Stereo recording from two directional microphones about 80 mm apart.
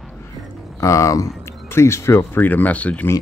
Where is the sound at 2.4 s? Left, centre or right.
Left.